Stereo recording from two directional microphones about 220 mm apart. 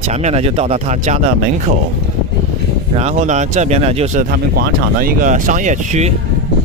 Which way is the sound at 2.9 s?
30° right (ahead or behind).